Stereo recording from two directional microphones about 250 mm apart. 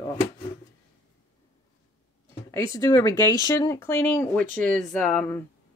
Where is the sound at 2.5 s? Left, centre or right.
Centre.